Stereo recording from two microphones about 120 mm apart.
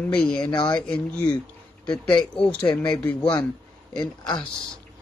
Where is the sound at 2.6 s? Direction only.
35° left (ahead or behind).